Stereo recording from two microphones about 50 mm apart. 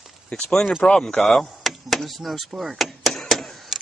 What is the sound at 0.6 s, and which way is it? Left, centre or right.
Speech, centre.